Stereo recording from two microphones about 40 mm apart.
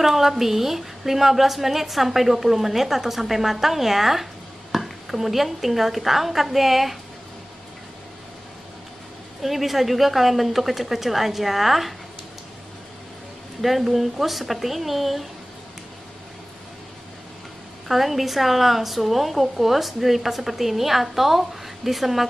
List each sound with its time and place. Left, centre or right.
0.0 s a woman's voice: centre
9.4 s a woman's voice: centre
13.6 s a woman's voice: centre
17.8 s a woman's voice: centre